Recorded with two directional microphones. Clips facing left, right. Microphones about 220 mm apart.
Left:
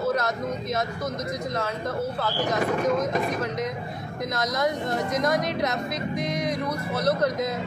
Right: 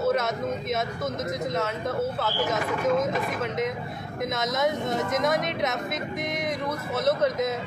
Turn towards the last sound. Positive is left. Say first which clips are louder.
# left 1 dB
turn(degrees=0)  # may be behind; listen again after turning